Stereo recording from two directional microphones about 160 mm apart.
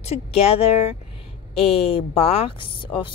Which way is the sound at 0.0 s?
40° left (ahead or behind).